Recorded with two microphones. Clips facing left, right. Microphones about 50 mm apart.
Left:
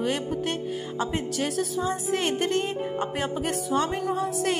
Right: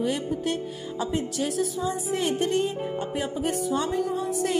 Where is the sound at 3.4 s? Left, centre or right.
Left.